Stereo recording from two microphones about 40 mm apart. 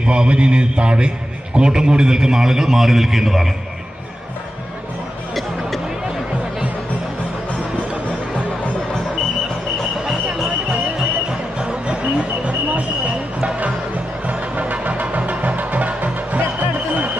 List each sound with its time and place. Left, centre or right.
0.0 s a man's voice: right; by 3.4 s centre
5.3 s music: centre
11.0 s music: right
12.7 s a sound: right
14.2 s music: right